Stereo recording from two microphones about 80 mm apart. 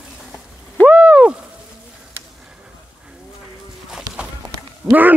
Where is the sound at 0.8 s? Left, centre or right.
Centre.